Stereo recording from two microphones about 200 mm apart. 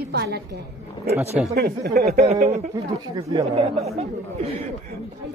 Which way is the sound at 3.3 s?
20° right (ahead or behind).